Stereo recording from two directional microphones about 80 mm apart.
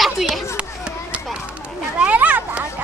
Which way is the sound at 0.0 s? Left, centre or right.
Centre.